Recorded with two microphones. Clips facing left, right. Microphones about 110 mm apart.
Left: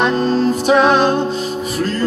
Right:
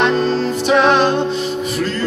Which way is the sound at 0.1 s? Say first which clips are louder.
Left 1 dB; 45° left (ahead or behind).